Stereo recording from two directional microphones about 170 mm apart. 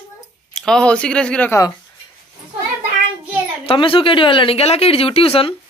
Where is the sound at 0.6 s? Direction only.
5° left (ahead or behind).